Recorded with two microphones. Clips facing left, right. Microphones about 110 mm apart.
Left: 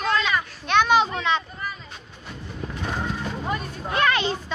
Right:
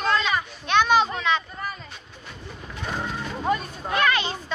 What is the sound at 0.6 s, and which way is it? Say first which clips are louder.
Speech: left 1 dB; 5° left (ahead or behind).